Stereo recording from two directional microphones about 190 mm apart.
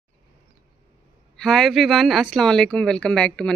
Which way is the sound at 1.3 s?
5° left (ahead or behind).